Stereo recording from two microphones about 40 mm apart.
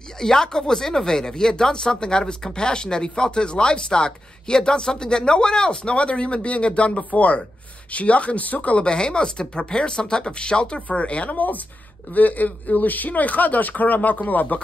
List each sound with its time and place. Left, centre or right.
0.2 s speech: centre; by 8.8 s left
8.8 s speech: left